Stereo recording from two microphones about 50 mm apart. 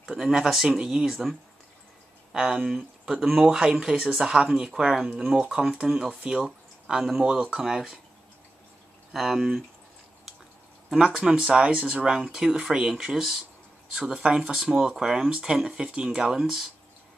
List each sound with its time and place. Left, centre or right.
0.1 s speech: centre
2.3 s speech: centre
9.1 s speech: centre
10.9 s speech: centre
12.2 s speech: centre
15.2 s speech: centre